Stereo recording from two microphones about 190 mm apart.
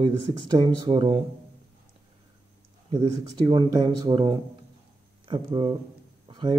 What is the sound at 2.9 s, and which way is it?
Speech, 20° right (ahead or behind).